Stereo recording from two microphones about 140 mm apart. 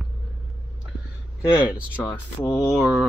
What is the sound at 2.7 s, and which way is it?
Mantra, centre (ahead or behind).